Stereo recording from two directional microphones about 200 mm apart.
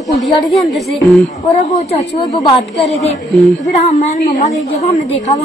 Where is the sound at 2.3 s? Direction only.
Centre (ahead or behind).